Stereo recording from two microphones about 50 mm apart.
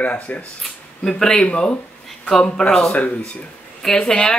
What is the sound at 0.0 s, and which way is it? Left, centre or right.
Speech, left.